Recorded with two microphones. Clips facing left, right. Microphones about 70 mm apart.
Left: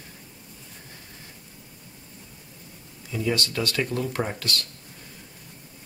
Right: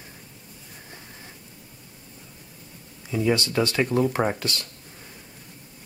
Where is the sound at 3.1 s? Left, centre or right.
Right.